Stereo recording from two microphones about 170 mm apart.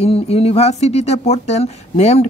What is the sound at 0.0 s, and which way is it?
Speech, 35° left (ahead or behind).